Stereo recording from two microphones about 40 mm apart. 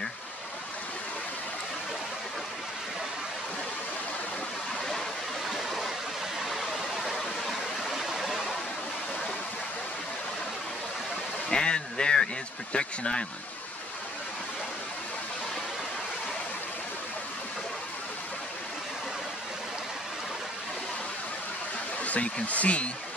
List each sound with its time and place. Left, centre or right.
5.5 s stream: centre
6.4 s waterfall: centre
8.1 s stream: centre
11.5 s a sound: left
22.0 s speech: left